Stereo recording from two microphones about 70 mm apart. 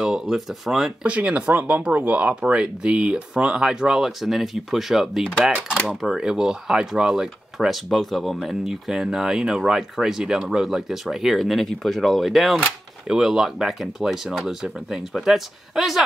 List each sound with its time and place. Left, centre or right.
0.0 s speech: centre
1.0 s speech: centre